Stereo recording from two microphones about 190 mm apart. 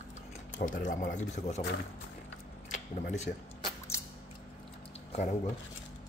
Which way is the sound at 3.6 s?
15° left (ahead or behind).